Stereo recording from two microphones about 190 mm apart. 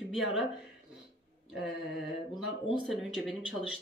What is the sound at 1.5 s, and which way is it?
A woman's voice, centre (ahead or behind).